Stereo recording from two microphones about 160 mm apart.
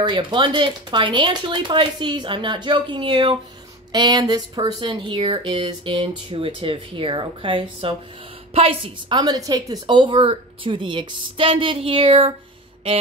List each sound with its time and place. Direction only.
0.0 s speech: 30° right (ahead or behind)